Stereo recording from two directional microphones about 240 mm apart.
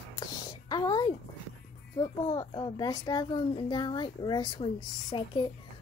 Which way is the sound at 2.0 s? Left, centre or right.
Centre.